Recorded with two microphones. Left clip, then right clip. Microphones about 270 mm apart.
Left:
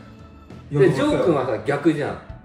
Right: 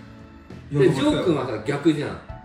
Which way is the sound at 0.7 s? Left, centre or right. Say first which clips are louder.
Left 2 dB; centre.